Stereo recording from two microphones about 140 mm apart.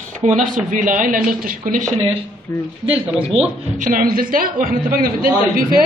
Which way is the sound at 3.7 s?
75° right (ahead or behind).